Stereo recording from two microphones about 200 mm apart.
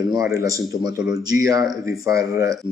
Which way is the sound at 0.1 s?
15° right (ahead or behind).